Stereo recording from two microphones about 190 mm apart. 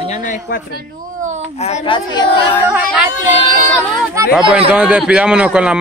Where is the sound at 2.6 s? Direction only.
10° right (ahead or behind).